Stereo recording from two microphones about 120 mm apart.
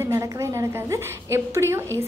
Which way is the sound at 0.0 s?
25° right (ahead or behind).